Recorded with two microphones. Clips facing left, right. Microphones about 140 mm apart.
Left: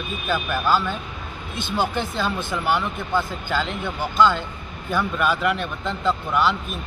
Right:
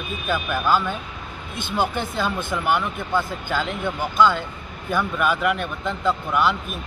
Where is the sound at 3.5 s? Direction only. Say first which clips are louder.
Right 1 dB; 10° right (ahead or behind).